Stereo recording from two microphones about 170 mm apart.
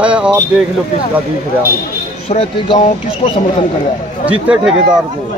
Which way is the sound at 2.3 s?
35° left (ahead or behind).